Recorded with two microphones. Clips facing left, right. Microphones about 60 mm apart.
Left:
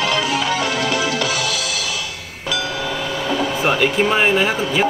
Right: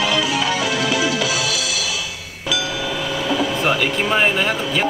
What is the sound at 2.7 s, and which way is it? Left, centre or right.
Train, left.